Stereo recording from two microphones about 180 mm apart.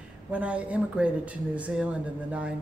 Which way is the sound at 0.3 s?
5° right (ahead or behind).